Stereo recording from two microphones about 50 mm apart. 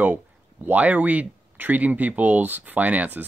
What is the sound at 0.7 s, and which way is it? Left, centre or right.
Speech, right.